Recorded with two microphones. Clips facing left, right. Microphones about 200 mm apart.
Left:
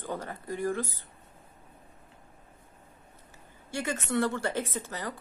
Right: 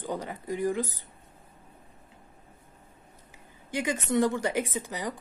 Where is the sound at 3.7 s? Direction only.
15° right (ahead or behind).